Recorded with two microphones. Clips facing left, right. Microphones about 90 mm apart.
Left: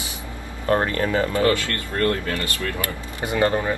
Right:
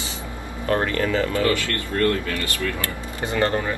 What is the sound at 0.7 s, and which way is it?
Speech, 30° left (ahead or behind).